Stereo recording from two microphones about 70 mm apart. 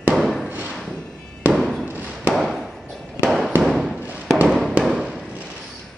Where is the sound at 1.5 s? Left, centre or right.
Centre.